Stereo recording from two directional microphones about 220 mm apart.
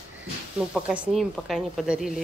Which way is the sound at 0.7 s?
5° right (ahead or behind).